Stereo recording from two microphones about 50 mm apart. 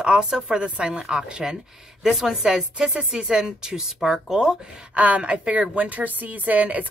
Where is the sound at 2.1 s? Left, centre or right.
Centre.